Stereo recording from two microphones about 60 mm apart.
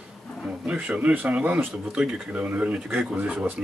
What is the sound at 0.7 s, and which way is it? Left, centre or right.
Speech, right.